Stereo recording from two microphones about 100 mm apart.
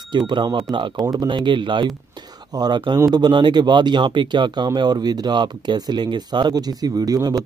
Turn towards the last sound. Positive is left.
turn(degrees=-40)  # may be behind; listen again after turning